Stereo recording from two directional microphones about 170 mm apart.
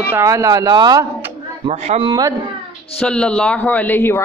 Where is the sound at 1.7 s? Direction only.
35° right (ahead or behind).